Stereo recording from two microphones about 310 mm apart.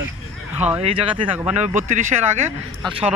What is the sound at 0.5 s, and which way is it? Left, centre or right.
Speech, centre.